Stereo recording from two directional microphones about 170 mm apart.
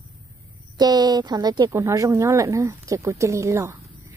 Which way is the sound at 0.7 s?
25° right (ahead or behind).